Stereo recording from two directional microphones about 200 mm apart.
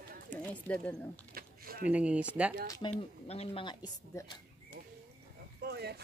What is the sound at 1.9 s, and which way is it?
Speech, 5° right (ahead or behind).